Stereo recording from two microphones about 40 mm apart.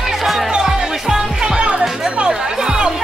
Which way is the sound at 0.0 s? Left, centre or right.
Centre.